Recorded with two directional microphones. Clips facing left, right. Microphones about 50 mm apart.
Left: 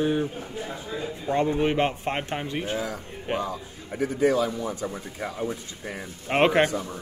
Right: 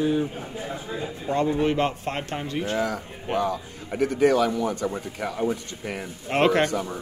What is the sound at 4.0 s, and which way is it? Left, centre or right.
Speech, right.